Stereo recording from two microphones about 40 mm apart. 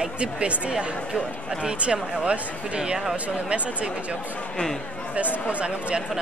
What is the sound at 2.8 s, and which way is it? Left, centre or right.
Speech, centre.